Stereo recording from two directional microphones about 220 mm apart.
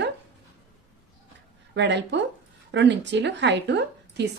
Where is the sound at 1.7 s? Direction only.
55° right (ahead or behind).